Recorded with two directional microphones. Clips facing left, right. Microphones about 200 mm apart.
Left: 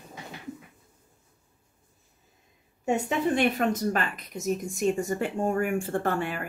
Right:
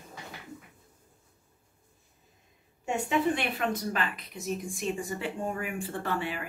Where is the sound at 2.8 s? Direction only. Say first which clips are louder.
Left 2 dB; 40° left (ahead or behind).